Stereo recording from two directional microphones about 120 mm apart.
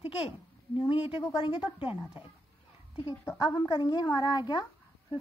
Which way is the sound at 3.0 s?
40° left (ahead or behind).